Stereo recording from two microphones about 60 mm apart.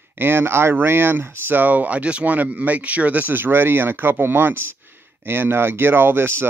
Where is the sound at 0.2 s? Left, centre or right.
Right.